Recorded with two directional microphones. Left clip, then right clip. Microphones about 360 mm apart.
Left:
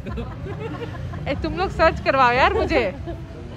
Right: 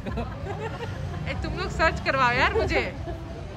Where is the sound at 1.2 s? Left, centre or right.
Centre.